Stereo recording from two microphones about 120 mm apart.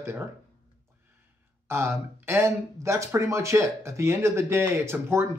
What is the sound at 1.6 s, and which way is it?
Speech, 20° right (ahead or behind).